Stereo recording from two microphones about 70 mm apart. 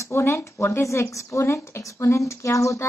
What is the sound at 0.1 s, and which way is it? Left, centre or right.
A woman's voice, left.